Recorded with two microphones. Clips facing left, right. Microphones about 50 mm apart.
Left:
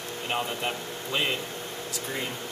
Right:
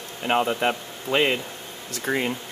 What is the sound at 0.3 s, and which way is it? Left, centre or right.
Speech, right.